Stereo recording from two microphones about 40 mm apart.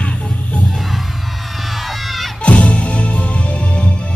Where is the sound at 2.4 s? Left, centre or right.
Left.